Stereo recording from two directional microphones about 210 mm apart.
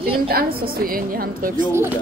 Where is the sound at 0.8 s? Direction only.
45° right (ahead or behind).